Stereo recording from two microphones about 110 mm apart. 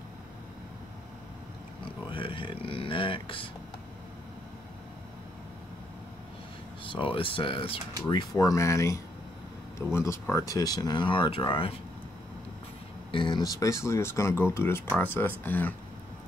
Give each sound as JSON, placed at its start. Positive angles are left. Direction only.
{"t": 2.0, "sound": "speech", "side_deg": 50}
{"t": 6.8, "sound": "speech", "side_deg": 50}
{"t": 8.4, "sound": "speech", "side_deg": 30}
{"t": 13.1, "sound": "speech", "side_deg": 45}
{"t": 13.4, "sound": "speech", "side_deg": 30}